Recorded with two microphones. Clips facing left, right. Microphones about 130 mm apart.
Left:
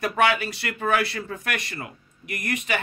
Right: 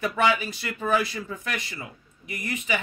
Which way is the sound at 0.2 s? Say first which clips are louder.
Left 2 dB; 70° left (ahead or behind).